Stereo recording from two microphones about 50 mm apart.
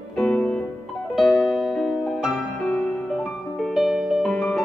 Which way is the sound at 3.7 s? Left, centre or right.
Centre.